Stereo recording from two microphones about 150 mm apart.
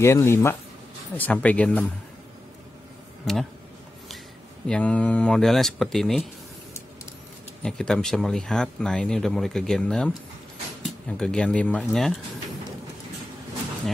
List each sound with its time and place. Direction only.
0.0 s speech: 20° left (ahead or behind)
4.6 s speech: 10° left (ahead or behind)
7.6 s speech: 5° left (ahead or behind)